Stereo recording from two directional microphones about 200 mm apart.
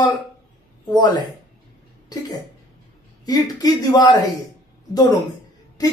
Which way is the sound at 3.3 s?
20° left (ahead or behind).